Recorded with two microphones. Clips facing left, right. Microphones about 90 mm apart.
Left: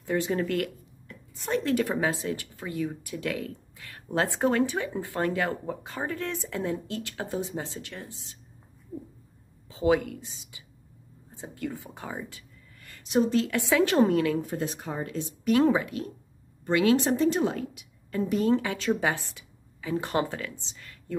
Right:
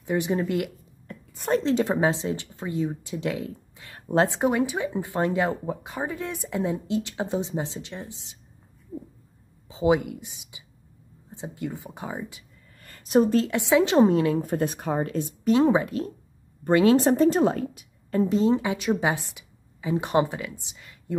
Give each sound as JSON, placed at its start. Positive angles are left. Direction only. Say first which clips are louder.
{"t": 0.0, "sound": "speech", "louder": "right 2 dB", "side_deg": -20}
{"t": 1.1, "sound": "a sound", "louder": "right 6 dB", "side_deg": -45}
{"t": 1.6, "sound": "speech", "louder": "right 2 dB", "side_deg": -25}
{"t": 9.7, "sound": "speech", "louder": "right 2 dB", "side_deg": -20}
{"t": 12.7, "sound": "a sound", "louder": "right 5 dB", "side_deg": -40}
{"t": 13.5, "sound": "speech", "louder": "right 3 dB", "side_deg": -20}
{"t": 14.4, "sound": "speech", "louder": "right 5 dB", "side_deg": -55}
{"t": 15.4, "sound": "speech", "louder": "right 2 dB", "side_deg": -25}
{"t": 16.8, "sound": "a woman's voice", "louder": "right 4 dB", "side_deg": -40}
{"t": 18.4, "sound": "speech", "louder": "right 2 dB", "side_deg": -20}